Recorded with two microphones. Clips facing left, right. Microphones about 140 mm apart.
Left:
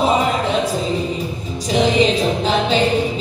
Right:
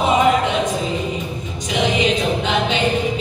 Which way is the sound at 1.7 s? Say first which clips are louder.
Left 3 dB; 35° left (ahead or behind).